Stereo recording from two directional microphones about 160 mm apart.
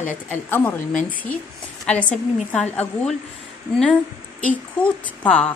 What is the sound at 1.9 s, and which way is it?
A woman's voice, 10° left (ahead or behind).